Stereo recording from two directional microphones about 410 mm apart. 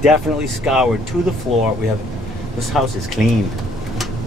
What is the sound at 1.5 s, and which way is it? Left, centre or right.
Speech, centre.